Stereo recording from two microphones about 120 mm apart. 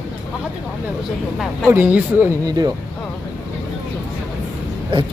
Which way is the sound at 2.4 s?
35° right (ahead or behind).